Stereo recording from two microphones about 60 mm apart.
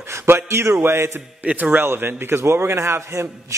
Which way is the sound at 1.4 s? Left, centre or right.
Right.